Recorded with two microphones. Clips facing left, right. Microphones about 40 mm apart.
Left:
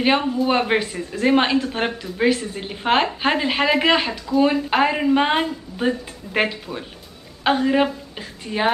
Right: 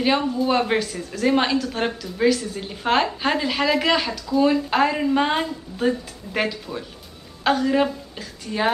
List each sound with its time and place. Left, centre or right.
0.0 s a woman's voice: left